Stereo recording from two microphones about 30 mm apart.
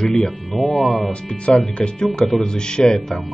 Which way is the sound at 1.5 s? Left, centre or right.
Left.